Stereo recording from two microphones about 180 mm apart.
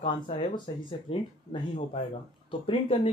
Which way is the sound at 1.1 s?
30° left (ahead or behind).